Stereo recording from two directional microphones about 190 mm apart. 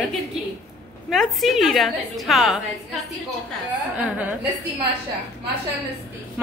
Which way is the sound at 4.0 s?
10° right (ahead or behind).